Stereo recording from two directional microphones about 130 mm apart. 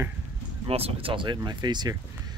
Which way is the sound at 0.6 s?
50° right (ahead or behind).